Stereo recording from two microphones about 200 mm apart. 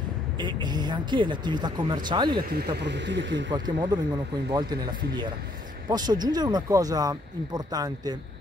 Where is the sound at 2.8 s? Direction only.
60° right (ahead or behind).